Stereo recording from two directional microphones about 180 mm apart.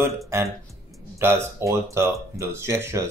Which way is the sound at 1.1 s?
15° right (ahead or behind).